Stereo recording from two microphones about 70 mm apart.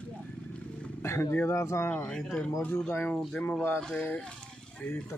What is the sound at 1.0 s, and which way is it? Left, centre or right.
Roaring cats, left.